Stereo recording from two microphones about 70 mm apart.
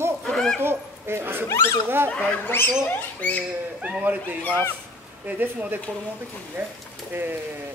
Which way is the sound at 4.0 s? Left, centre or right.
Right.